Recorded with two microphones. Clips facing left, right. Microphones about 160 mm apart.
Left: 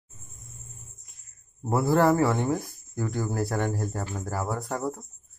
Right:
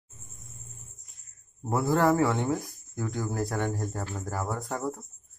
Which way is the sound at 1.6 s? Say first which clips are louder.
Left 2 dB; 10° left (ahead or behind).